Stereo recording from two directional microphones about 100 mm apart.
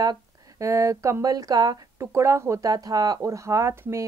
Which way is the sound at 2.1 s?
30° right (ahead or behind).